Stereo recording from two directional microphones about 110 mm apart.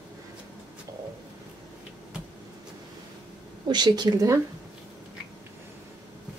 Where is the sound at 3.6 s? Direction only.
40° right (ahead or behind).